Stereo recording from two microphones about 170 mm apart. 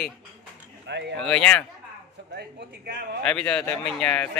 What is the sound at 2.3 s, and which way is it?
Speech, 75° right (ahead or behind).